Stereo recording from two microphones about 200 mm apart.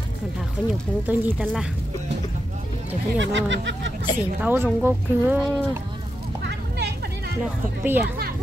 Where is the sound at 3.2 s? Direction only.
65° right (ahead or behind).